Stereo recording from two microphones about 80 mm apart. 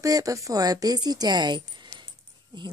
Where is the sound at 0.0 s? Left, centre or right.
Right.